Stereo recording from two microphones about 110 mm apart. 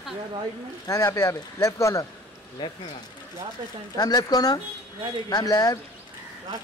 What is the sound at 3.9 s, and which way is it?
Speech, 35° left (ahead or behind).